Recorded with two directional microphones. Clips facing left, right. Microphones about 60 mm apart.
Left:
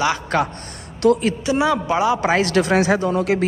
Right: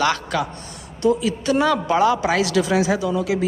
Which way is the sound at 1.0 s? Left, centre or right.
Left.